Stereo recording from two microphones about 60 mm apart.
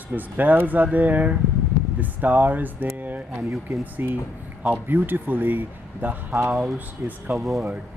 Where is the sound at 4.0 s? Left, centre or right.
Right.